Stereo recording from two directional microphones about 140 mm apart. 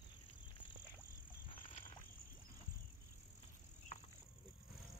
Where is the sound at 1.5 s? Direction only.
35° left (ahead or behind).